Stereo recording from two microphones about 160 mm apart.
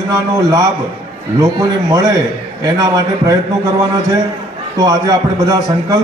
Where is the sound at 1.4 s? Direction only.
25° right (ahead or behind).